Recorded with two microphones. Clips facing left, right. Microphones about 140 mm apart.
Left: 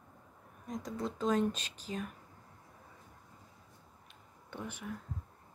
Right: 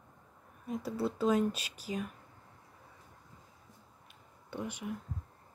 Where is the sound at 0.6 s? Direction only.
10° right (ahead or behind).